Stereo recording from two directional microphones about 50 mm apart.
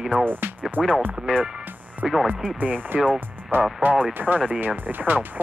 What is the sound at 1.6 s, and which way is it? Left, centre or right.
Music, right.